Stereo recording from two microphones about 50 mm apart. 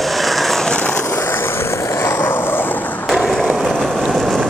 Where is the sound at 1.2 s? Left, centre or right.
Left.